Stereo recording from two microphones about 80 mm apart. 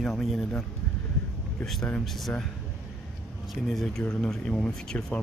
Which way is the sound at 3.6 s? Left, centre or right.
Centre.